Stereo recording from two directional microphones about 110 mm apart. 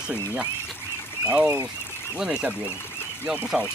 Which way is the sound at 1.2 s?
10° right (ahead or behind).